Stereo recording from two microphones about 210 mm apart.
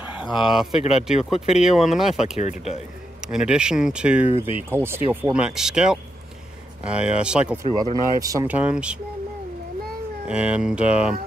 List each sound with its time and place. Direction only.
0.5 s speech: centre (ahead or behind)
2.3 s speech: 30° left (ahead or behind)
3.3 s speech: 5° right (ahead or behind)
7.7 s speech: 20° right (ahead or behind)
10.2 s speech: 5° right (ahead or behind)